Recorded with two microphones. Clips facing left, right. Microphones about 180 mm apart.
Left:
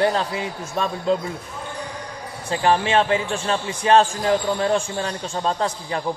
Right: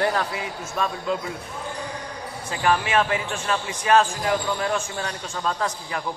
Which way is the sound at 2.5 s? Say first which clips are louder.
Left 3 dB; 30° left (ahead or behind).